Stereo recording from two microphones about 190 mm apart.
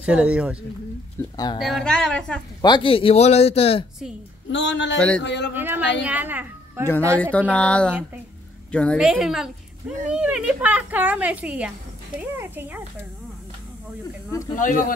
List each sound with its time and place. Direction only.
0.0 s a woman's voice: 5° right (ahead or behind)
1.3 s speech: 20° left (ahead or behind)
1.6 s a woman's voice: centre (ahead or behind)
2.6 s speech: 25° left (ahead or behind)
4.5 s a man's voice: 70° left (ahead or behind)
4.9 s a woman's voice: 5° left (ahead or behind)
5.2 s speech: 65° left (ahead or behind)
5.5 s a woman's voice: 10° right (ahead or behind)
5.8 s a man's voice: 70° left (ahead or behind)
6.0 s a child's voice: 10° right (ahead or behind)
7.2 s a woman's voice: 10° left (ahead or behind); by 12.8 s 10° right (ahead or behind)
14.5 s speech: 45° left (ahead or behind)